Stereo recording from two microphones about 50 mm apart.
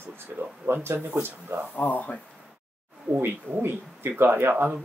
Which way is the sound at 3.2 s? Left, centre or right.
Right.